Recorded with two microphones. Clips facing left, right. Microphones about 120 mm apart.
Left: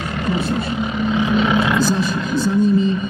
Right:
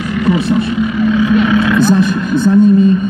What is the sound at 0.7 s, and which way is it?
Vehicle, 25° left (ahead or behind).